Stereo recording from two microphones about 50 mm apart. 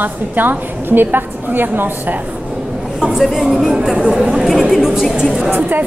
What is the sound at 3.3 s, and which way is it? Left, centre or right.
A woman's voice, centre.